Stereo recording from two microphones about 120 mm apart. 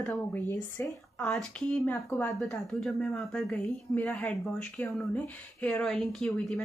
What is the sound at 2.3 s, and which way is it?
A woman's voice, centre (ahead or behind).